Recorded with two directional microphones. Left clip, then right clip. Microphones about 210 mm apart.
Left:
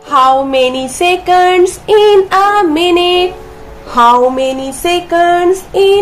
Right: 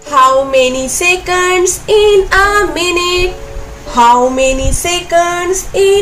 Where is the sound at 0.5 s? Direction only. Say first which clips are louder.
Right 1 dB; 20° left (ahead or behind).